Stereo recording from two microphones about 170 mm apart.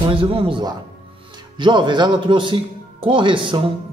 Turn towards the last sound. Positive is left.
turn(degrees=-30)  # may be behind; listen again after turning